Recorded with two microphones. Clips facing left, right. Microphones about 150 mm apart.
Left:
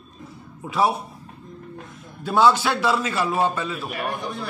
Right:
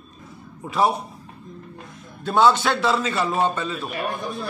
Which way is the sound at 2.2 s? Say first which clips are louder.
Even; 5° left (ahead or behind).